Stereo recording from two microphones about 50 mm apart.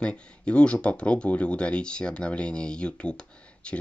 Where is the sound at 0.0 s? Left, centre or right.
Left.